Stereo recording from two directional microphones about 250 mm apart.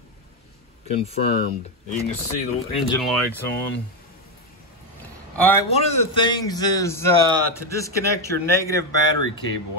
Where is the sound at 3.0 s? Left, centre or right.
Centre.